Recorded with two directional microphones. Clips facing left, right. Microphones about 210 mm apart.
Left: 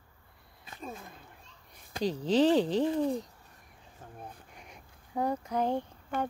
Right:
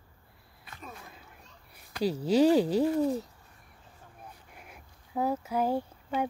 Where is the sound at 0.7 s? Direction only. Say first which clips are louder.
Left 4 dB; 25° left (ahead or behind).